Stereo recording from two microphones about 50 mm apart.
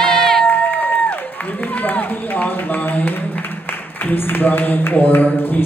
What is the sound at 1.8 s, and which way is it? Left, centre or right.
Run, left.